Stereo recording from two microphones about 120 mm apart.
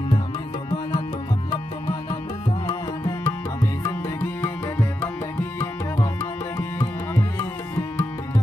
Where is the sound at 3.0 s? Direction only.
25° left (ahead or behind).